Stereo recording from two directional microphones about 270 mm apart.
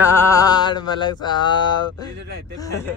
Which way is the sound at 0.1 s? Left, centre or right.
Centre.